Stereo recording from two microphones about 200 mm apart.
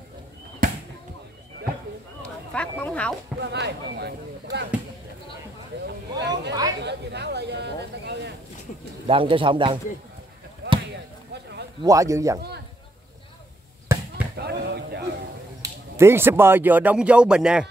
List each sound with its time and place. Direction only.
0.6 s basketball bounce: 45° right (ahead or behind)
2.5 s speech: 5° left (ahead or behind)
3.3 s speech: 55° right (ahead or behind)
6.1 s speech: 60° right (ahead or behind)
9.0 s speech: 25° right (ahead or behind)
11.8 s speech: 15° right (ahead or behind)
12.4 s a man's voice: 55° right (ahead or behind)
13.9 s basketball bounce: 15° right (ahead or behind)
14.3 s a sound: 55° right (ahead or behind)
15.6 s speech: 10° right (ahead or behind)